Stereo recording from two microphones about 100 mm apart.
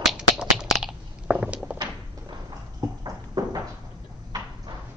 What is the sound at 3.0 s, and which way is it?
Horse, 35° right (ahead or behind).